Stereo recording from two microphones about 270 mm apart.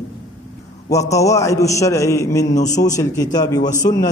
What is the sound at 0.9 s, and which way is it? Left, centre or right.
A man's voice, centre.